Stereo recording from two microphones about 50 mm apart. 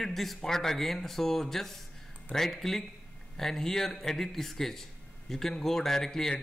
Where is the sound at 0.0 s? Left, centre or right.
Centre.